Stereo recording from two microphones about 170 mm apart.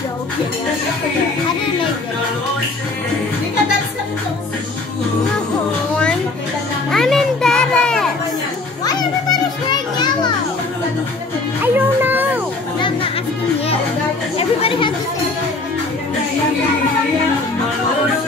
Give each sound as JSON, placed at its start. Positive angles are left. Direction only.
{"t": 6.9, "sound": "music", "side_deg": 0}
{"t": 8.8, "sound": "children playing", "side_deg": 25}
{"t": 11.6, "sound": "music", "side_deg": -10}
{"t": 14.3, "sound": "chatter", "side_deg": 30}